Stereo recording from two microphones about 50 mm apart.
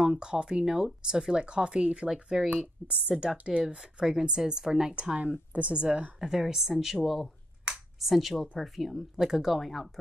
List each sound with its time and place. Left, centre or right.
0.0 s a woman's voice: centre
3.6 s a woman's voice: centre
6.1 s a woman's voice: centre
8.0 s speech: centre